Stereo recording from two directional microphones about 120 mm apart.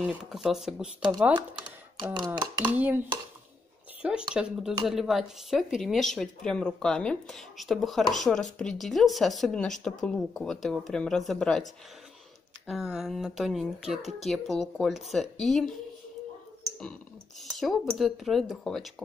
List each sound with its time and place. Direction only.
0.2 s speech: 5° right (ahead or behind)
2.1 s speech: 40° right (ahead or behind)
2.6 s speech: 15° right (ahead or behind); by 15.7 s centre (ahead or behind)
17.6 s speech: centre (ahead or behind)